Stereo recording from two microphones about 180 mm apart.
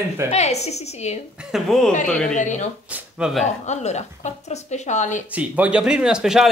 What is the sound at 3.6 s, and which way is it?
A woman's voice, 40° left (ahead or behind).